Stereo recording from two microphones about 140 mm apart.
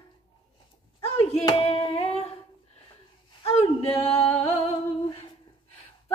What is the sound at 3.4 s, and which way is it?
A man's voice, 45° left (ahead or behind).